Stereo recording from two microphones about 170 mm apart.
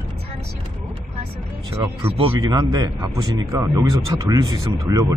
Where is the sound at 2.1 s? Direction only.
30° right (ahead or behind).